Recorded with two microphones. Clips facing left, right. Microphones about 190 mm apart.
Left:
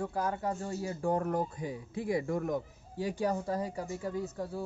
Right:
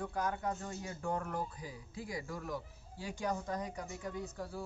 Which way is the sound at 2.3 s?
50° left (ahead or behind).